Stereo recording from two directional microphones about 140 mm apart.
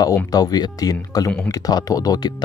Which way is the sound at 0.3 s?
30° left (ahead or behind).